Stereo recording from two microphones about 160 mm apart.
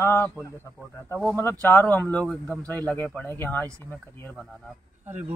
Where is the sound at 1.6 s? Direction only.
10° left (ahead or behind).